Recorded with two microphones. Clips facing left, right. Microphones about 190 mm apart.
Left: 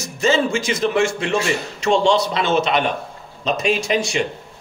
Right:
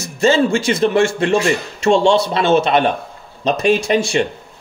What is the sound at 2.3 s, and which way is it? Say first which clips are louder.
Speech: right 5 dB; 50° right (ahead or behind).